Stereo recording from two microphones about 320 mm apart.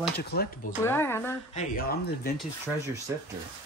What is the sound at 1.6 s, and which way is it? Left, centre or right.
Speech, left.